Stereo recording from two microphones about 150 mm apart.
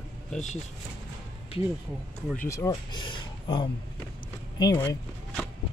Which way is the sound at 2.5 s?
20° left (ahead or behind).